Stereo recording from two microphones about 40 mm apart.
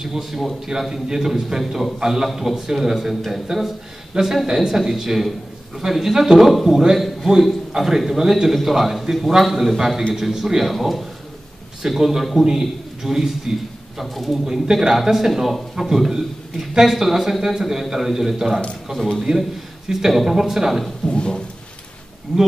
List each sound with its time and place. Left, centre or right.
0.0 s a man's voice: centre
20.8 s a man's voice: centre
22.3 s a man's voice: centre